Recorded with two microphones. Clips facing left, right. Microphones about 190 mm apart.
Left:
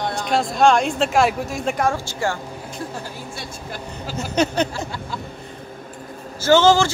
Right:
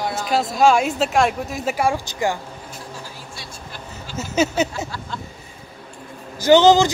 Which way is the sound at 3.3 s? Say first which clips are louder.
Left 4 dB; 50° left (ahead or behind).